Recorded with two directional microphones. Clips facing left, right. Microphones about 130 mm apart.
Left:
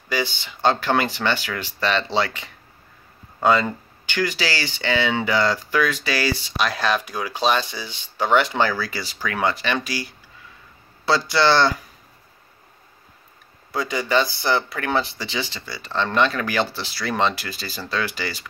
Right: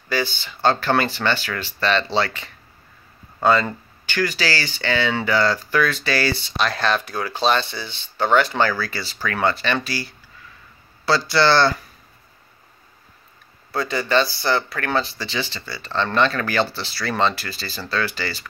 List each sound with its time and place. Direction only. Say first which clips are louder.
0.1 s speech: right 1 dB; 20° left (ahead or behind)
13.7 s speech: right 1 dB; 15° left (ahead or behind)